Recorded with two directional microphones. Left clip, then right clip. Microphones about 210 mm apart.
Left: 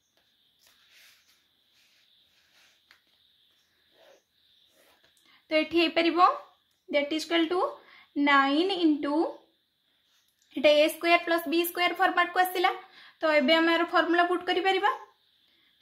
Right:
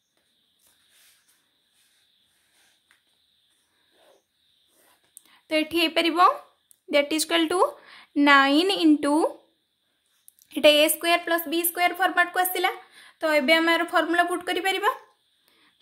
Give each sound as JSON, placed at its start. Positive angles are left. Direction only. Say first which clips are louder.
{"t": 5.2, "sound": "a woman's voice", "louder": "right 2 dB", "side_deg": -35}
{"t": 6.9, "sound": "a woman's voice", "louder": "right 5 dB", "side_deg": -40}
{"t": 10.5, "sound": "speech", "louder": "right 4 dB", "side_deg": -40}